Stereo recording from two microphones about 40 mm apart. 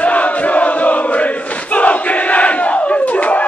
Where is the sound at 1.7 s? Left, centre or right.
Left.